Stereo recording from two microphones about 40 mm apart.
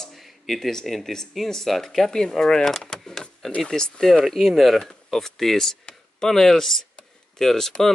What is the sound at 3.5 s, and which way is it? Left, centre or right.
Speech, centre.